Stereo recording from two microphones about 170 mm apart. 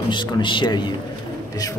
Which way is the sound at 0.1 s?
30° left (ahead or behind).